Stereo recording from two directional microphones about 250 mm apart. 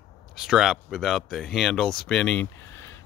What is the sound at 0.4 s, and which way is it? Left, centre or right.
Speech, centre.